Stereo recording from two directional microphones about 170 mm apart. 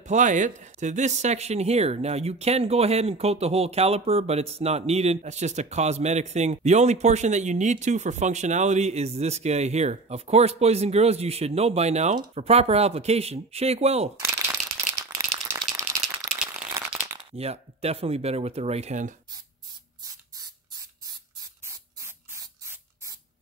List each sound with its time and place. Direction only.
0.0 s speech: 45° right (ahead or behind)
14.5 s rattle: 20° right (ahead or behind)
16.9 s crumpling: 10° right (ahead or behind)
17.2 s speech: 35° right (ahead or behind)
20.0 s spray: 20° right (ahead or behind)